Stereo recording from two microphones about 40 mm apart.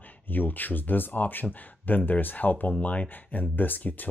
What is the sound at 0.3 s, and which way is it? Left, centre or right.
Speech, left.